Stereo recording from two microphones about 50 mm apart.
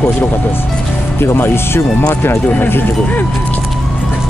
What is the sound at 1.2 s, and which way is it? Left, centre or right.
Speech, left.